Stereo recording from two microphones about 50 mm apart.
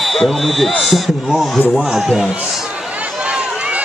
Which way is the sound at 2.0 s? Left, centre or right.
Centre.